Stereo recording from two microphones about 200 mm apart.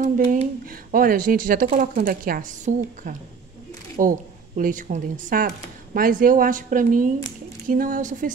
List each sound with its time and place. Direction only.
0.0 s a woman's voice: 35° right (ahead or behind)